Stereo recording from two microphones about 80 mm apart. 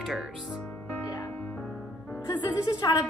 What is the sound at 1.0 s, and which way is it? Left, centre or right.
Music, left.